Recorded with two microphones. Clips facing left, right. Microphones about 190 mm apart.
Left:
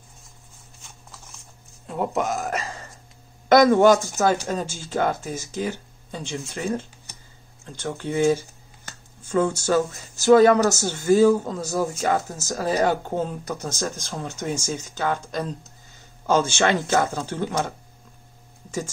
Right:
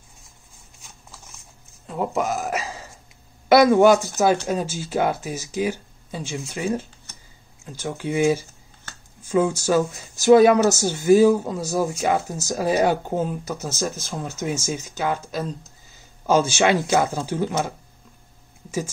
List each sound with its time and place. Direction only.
1.9 s speech: centre (ahead or behind)